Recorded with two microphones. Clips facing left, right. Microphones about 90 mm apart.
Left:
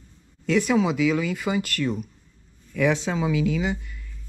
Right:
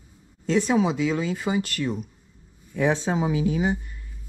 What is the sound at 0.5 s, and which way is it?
Speech, 30° right (ahead or behind).